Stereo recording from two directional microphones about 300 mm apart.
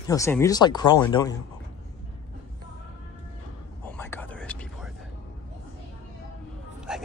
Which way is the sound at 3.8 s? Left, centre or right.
Centre.